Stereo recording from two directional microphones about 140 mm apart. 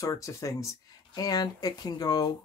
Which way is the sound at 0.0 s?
25° left (ahead or behind).